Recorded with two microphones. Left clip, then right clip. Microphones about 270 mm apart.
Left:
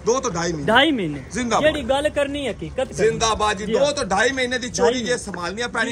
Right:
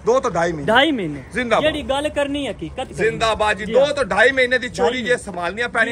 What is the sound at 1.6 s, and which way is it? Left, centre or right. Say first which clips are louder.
A man's voice: left 1 dB; right.